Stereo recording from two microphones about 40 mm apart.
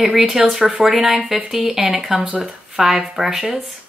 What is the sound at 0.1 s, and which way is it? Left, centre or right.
Speech, centre.